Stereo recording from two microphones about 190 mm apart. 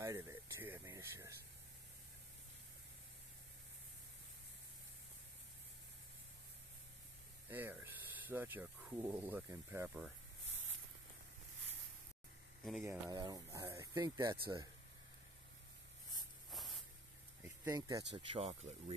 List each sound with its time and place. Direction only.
0.0 s a sound: 15° right (ahead or behind)
7.4 s speech: 10° right (ahead or behind)
12.8 s speech: 20° right (ahead or behind)
16.4 s spray: centre (ahead or behind)
17.4 s a sound: 15° right (ahead or behind)
18.1 s speech: 30° right (ahead or behind)